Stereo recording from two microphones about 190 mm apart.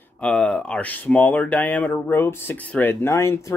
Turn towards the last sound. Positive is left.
turn(degrees=15)  # may be behind; listen again after turning